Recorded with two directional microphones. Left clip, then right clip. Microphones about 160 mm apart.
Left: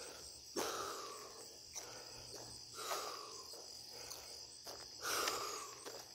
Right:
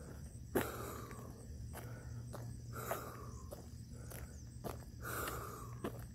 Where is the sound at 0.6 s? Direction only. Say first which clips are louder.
Left 2 dB; 5° left (ahead or behind).